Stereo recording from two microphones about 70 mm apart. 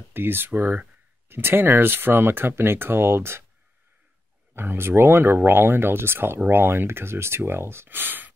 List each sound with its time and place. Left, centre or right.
0.1 s speech: right
4.6 s speech: right